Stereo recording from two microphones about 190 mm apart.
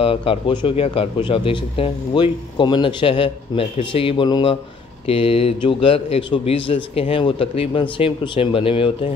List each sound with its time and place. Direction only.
0.0 s a man's voice: 30° left (ahead or behind)